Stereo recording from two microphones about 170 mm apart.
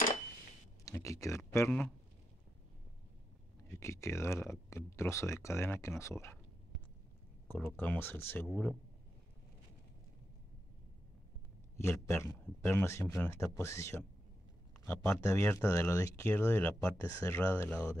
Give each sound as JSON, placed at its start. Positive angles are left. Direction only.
{"t": 0.8, "sound": "speech", "side_deg": 20}
{"t": 3.6, "sound": "speech", "side_deg": 15}
{"t": 7.5, "sound": "speech", "side_deg": 10}
{"t": 11.7, "sound": "speech", "side_deg": 15}